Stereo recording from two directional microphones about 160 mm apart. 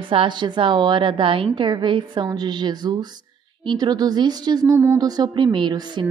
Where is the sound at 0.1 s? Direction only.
30° right (ahead or behind).